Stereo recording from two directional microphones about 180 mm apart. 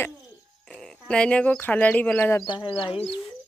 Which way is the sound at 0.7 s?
5° left (ahead or behind).